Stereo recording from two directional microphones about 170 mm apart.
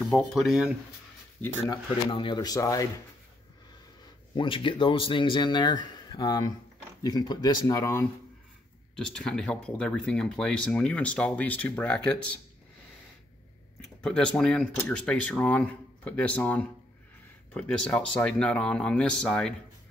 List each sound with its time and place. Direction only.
0.1 s speech: centre (ahead or behind)
1.7 s speech: 30° left (ahead or behind)
4.4 s speech: 30° left (ahead or behind)
8.9 s speech: 5° left (ahead or behind)
14.0 s speech: 5° left (ahead or behind)